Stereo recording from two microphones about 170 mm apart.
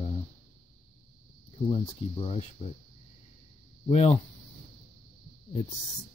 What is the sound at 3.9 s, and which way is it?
Speech, 35° left (ahead or behind).